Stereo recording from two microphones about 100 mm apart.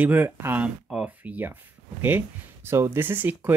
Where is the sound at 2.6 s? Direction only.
25° right (ahead or behind).